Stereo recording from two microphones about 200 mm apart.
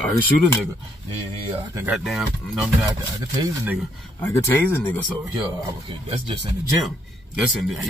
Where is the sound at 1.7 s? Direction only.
10° right (ahead or behind).